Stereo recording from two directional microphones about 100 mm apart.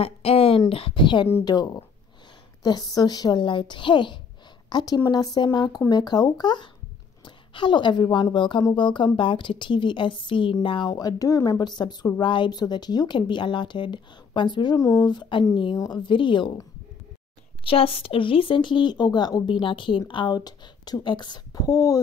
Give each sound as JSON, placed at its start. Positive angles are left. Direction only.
{"t": 0.0, "sound": "a sound", "side_deg": 75}
{"t": 0.7, "sound": "a woman's voice", "side_deg": 70}
{"t": 1.4, "sound": "a woman's voice", "side_deg": 40}
{"t": 10.9, "sound": "a woman's voice", "side_deg": 40}
{"t": 17.6, "sound": "a woman's voice", "side_deg": 70}
{"t": 19.6, "sound": "a woman's voice", "side_deg": 55}